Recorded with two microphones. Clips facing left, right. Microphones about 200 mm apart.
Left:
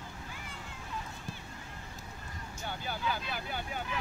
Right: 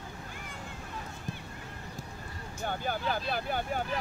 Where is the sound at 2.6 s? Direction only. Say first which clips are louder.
Right 6 dB; 50° right (ahead or behind).